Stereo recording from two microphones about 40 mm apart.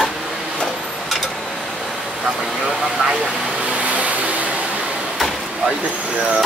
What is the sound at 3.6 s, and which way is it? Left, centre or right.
Vehicle, right.